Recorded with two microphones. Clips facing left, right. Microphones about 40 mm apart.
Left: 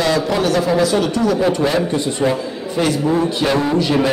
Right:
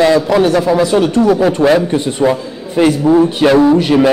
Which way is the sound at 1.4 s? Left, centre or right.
Right.